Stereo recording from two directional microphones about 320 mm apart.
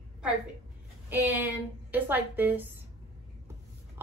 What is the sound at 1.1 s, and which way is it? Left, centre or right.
A woman's voice, centre.